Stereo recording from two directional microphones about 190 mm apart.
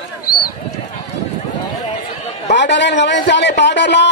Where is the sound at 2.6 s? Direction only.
65° left (ahead or behind).